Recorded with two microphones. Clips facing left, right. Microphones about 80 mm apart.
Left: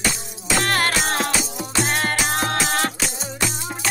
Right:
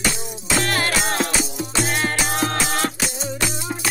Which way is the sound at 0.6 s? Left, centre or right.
Left.